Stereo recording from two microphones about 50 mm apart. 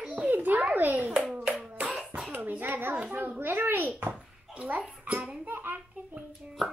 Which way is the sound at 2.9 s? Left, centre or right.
Right.